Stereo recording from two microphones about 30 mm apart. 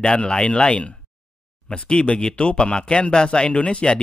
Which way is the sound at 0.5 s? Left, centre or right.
Left.